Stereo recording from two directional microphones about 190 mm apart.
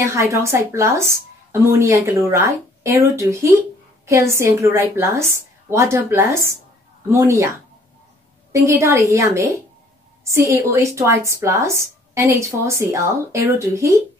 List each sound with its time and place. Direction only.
0.0 s a woman's voice: 15° right (ahead or behind)